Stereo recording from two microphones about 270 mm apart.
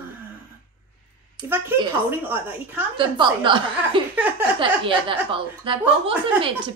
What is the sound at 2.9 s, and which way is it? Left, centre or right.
A woman's voice, centre.